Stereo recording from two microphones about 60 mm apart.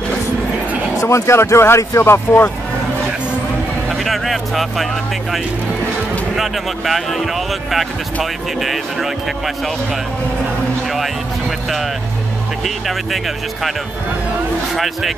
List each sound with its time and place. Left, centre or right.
1.0 s speech: left
4.0 s vehicle: centre
6.3 s speech: centre
12.6 s speech: centre